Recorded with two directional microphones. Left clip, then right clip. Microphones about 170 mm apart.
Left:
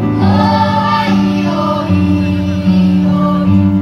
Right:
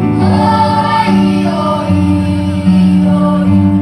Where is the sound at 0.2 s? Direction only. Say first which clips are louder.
Right 1 dB; 20° right (ahead or behind).